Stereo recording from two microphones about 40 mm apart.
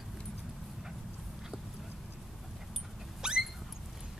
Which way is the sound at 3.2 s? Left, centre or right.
Centre.